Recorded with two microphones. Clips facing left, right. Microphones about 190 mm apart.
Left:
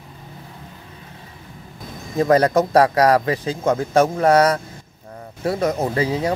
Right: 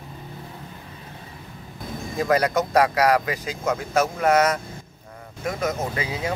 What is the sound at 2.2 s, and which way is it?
Speech, 30° left (ahead or behind).